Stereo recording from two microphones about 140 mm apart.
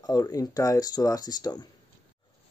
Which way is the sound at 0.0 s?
30° left (ahead or behind).